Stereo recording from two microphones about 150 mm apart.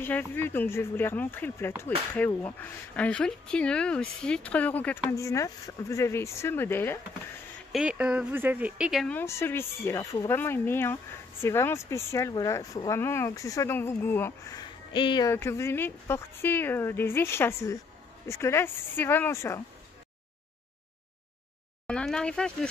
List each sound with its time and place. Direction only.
0.0 s speech: 10° left (ahead or behind)
5.1 s speech: 20° left (ahead or behind)
7.7 s speech: 5° right (ahead or behind)
9.0 s speech: 15° left (ahead or behind)
14.6 s music: 30° left (ahead or behind)
15.2 s speech: 20° left (ahead or behind)
21.8 s speech: 5° left (ahead or behind)